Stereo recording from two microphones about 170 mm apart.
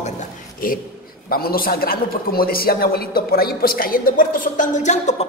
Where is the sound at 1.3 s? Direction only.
60° left (ahead or behind).